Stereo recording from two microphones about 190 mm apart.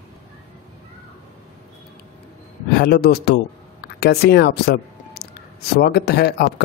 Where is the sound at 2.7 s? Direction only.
55° left (ahead or behind).